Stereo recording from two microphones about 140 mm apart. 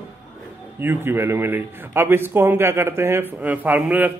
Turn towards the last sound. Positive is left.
turn(degrees=-10)  # may be behind; listen again after turning